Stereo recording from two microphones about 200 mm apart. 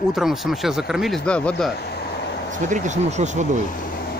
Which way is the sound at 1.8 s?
55° left (ahead or behind).